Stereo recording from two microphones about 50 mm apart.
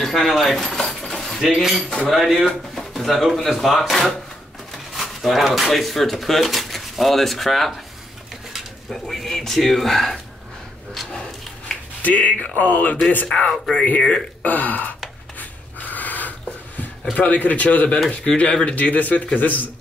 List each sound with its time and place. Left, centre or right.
0.0 s speech: centre
0.6 s keys jangling: centre
1.4 s speech: centre
4.9 s speech: centre
12.0 s speech: left
13.3 s speech: centre
13.7 s speech: left
14.4 s a sound: left
17.1 s speech: left
18.8 s speech: left